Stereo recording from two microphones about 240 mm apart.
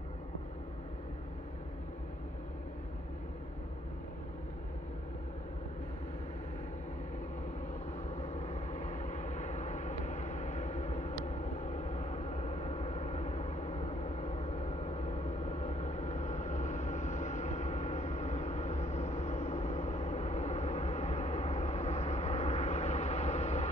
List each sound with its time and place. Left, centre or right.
8.2 s vehicle: left